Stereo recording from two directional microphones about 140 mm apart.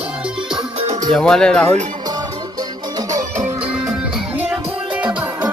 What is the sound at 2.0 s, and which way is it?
Music, 30° right (ahead or behind).